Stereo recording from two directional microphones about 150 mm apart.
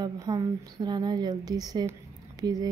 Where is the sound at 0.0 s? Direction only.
30° right (ahead or behind).